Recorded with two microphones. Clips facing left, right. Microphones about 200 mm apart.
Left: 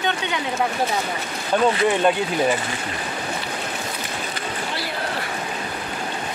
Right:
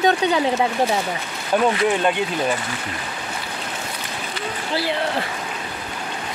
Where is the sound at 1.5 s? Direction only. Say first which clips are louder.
Even; 10° right (ahead or behind).